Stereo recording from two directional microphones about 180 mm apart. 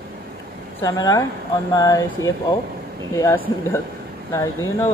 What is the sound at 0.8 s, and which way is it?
Mantra, 20° left (ahead or behind).